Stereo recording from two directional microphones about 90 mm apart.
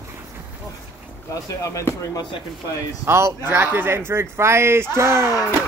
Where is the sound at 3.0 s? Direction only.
30° right (ahead or behind).